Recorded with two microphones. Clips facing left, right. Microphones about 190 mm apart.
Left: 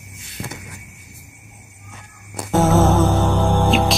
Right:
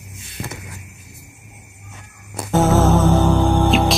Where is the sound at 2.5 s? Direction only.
Centre (ahead or behind).